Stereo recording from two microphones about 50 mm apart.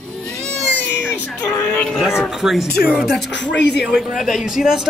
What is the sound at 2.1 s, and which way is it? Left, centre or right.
Speech, centre.